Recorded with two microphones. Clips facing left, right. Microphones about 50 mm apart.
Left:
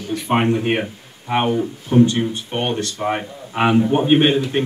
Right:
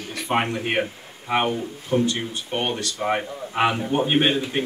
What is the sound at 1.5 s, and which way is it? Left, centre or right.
Speech, left.